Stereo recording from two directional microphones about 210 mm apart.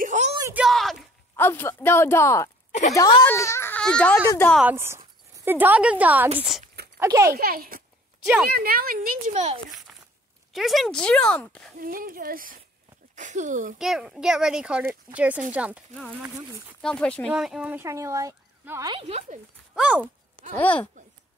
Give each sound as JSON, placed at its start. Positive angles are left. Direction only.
{"t": 0.0, "sound": "a sound", "side_deg": -35}
{"t": 0.4, "sound": "a sound", "side_deg": -10}
{"t": 1.3, "sound": "a child's voice", "side_deg": 10}
{"t": 4.6, "sound": "speech", "side_deg": -10}
{"t": 7.3, "sound": "speech", "side_deg": -45}
{"t": 10.5, "sound": "speech", "side_deg": 0}
{"t": 11.8, "sound": "speech", "side_deg": -45}
{"t": 13.7, "sound": "speech", "side_deg": 0}
{"t": 18.9, "sound": "speech", "side_deg": -30}
{"t": 19.7, "sound": "speech", "side_deg": -5}